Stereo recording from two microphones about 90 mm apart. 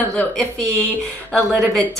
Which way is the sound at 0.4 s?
15° left (ahead or behind).